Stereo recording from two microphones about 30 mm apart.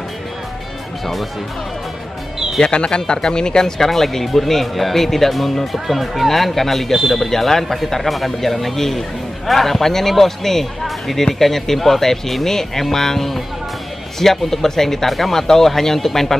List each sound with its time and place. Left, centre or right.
2.6 s speech: left
3.9 s speech: centre